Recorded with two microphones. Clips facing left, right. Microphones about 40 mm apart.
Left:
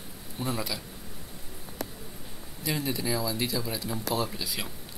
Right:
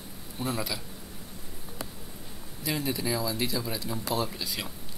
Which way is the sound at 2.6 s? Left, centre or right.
Centre.